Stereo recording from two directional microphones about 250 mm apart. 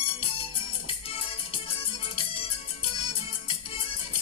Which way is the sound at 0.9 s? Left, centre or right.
Left.